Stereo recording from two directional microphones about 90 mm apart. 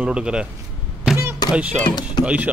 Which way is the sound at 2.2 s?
15° right (ahead or behind).